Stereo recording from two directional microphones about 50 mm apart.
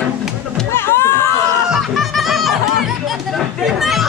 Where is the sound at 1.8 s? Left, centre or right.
Centre.